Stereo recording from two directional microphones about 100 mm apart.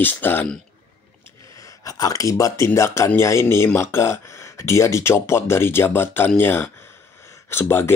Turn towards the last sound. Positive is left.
turn(degrees=25)  # may be behind; listen again after turning